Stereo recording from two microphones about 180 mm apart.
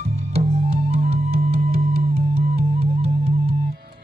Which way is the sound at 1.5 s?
60° right (ahead or behind).